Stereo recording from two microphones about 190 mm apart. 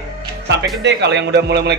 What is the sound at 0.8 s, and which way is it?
Speech, 65° right (ahead or behind).